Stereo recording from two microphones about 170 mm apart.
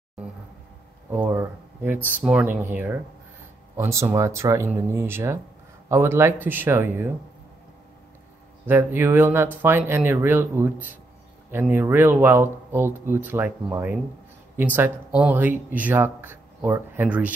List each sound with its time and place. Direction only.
1.1 s speech: 15° right (ahead or behind)
8.6 s speech: 10° right (ahead or behind)